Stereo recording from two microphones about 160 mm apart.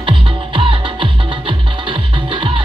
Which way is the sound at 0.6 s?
30° right (ahead or behind).